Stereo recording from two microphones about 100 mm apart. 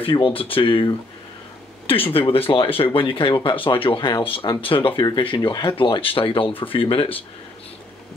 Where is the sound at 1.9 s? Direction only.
65° left (ahead or behind).